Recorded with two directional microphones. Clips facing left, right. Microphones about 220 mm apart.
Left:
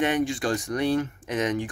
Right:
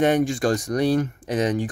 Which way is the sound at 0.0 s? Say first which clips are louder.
Right 5 dB; 45° right (ahead or behind).